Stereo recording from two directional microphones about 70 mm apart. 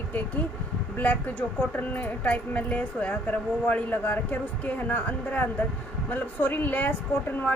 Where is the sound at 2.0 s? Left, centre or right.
Left.